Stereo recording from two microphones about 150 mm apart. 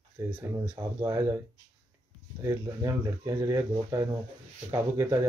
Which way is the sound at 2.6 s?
20° right (ahead or behind).